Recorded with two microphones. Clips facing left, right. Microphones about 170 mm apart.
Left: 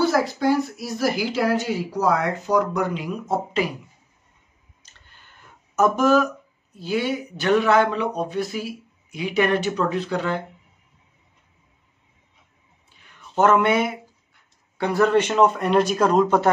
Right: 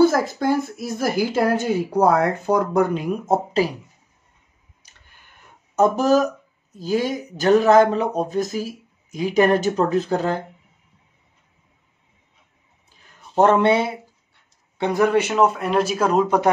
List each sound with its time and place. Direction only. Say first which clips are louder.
0.0 s a woman's voice: right 3 dB; 50° right (ahead or behind)
3.6 s speech: right 3 dB; 35° right (ahead or behind)
4.8 s a sound: even; 10° right (ahead or behind)
5.8 s speech: right 1 dB; 30° right (ahead or behind)
12.9 s a sound: right 4 dB; 40° right (ahead or behind)
14.8 s speech: right 1 dB; 15° right (ahead or behind)